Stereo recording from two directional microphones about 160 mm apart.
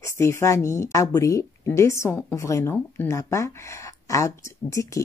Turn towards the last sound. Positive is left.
turn(degrees=20)  # may be behind; listen again after turning